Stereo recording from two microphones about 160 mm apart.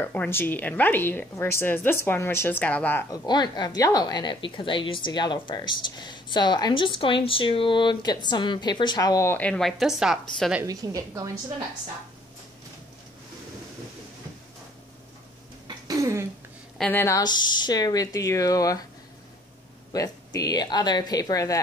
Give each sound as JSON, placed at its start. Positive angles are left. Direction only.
{"t": 0.0, "sound": "a woman's voice", "side_deg": 10}
{"t": 3.3, "sound": "a woman's voice", "side_deg": 25}
{"t": 10.6, "sound": "a woman's voice", "side_deg": -20}
{"t": 15.9, "sound": "a sound", "side_deg": -20}
{"t": 16.7, "sound": "speech", "side_deg": 5}
{"t": 17.0, "sound": "a woman's voice", "side_deg": 25}
{"t": 19.9, "sound": "a woman's voice", "side_deg": 20}